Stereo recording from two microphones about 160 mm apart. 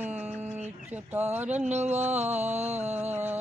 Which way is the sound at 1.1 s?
10° right (ahead or behind).